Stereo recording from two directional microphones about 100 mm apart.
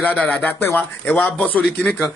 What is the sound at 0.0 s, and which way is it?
A man's voice, 15° left (ahead or behind).